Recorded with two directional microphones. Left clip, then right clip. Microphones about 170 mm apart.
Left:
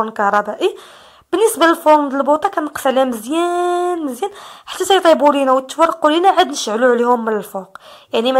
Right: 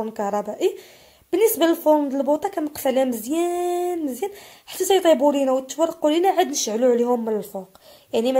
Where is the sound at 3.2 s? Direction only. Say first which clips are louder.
Left 6 dB; centre (ahead or behind).